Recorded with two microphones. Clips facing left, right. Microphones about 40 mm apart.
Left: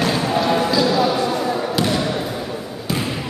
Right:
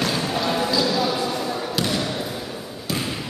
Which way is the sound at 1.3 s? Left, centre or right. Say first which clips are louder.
Left 5 dB; centre.